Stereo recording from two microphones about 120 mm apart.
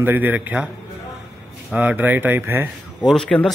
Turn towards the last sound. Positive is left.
turn(degrees=5)  # may be behind; listen again after turning